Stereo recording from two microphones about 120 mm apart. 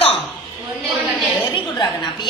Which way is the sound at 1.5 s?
40° left (ahead or behind).